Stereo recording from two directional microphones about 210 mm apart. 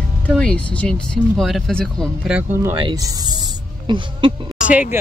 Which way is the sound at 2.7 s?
20° right (ahead or behind).